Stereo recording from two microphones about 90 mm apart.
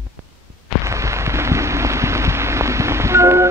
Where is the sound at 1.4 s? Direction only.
30° right (ahead or behind).